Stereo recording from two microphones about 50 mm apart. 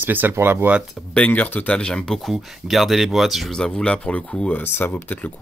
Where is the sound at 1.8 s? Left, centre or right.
Centre.